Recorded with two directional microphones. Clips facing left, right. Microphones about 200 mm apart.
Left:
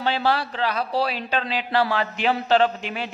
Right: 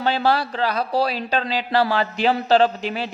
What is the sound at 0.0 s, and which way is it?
A man's voice, 40° right (ahead or behind).